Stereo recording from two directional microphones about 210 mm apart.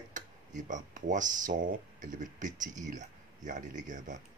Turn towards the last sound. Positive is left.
turn(degrees=-35)  # may be behind; listen again after turning